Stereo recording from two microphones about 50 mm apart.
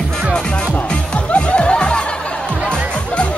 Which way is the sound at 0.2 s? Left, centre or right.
Centre.